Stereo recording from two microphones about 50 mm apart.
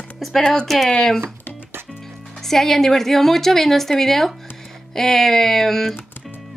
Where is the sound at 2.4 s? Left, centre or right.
Centre.